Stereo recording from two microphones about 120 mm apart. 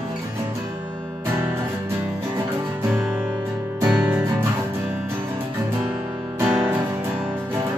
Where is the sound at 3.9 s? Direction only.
15° right (ahead or behind).